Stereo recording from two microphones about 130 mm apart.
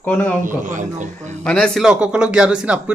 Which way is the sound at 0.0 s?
15° left (ahead or behind).